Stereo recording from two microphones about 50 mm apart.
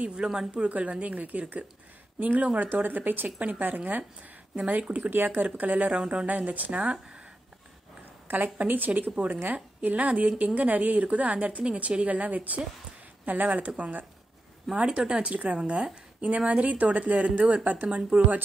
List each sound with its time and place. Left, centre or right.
0.0 s speech: centre
0.7 s speech: right
2.7 s speech: right
5.9 s speech: centre
6.2 s speech: right
8.5 s speech: right